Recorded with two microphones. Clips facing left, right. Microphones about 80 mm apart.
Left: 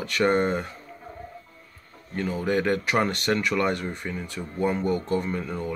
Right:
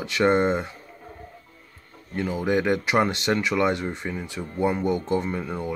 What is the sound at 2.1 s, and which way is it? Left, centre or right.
Speech, centre.